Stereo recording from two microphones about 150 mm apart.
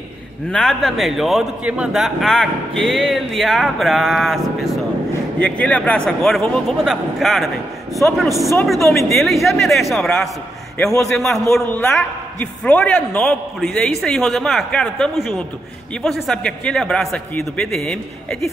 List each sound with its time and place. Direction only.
0.5 s a man's voice: 5° left (ahead or behind)